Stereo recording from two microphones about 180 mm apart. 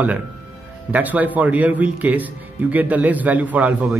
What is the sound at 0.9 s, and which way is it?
A man's voice, 10° right (ahead or behind).